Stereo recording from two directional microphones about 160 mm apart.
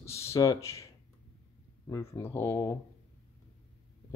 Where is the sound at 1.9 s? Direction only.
15° left (ahead or behind).